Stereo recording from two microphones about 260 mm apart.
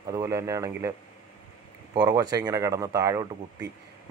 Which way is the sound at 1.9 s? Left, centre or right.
Centre.